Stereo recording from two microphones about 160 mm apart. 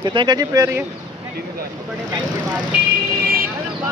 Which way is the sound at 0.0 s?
30° right (ahead or behind).